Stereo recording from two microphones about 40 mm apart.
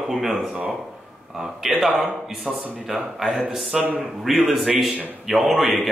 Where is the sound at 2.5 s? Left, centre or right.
Right.